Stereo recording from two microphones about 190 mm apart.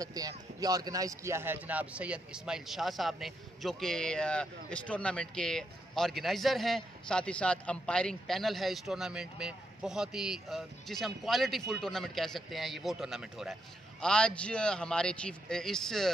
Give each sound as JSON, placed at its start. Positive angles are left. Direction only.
{"t": 0.0, "sound": "a man's voice", "side_deg": -20}